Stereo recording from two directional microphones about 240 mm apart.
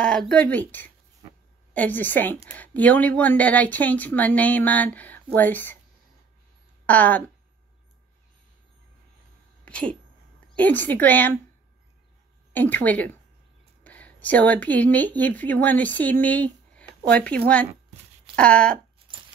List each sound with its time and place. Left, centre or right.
0.0 s a woman's voice: centre
6.9 s a woman's voice: centre
9.7 s a woman's voice: centre
12.5 s a woman's voice: centre
19.1 s typewriter: right